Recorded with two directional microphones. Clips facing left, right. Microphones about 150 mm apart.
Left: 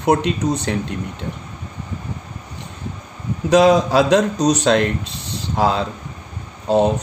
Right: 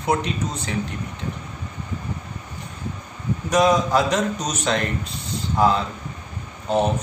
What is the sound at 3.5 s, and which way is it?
Speech, 75° left (ahead or behind).